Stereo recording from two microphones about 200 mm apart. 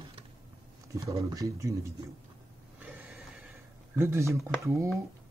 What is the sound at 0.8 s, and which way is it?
Beatboxing, 15° right (ahead or behind).